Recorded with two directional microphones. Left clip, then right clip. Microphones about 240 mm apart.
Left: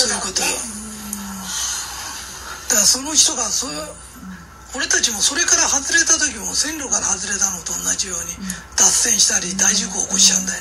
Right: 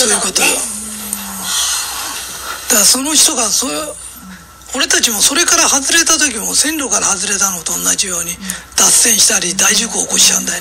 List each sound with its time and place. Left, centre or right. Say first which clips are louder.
0.0 s dishes: right 6 dB; right
1.5 s a sound: right 8 dB; right
2.7 s speech: right 5 dB; right